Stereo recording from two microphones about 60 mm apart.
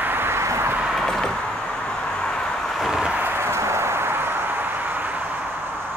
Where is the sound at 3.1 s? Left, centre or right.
Right.